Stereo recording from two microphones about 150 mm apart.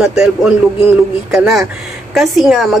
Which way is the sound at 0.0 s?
5° right (ahead or behind).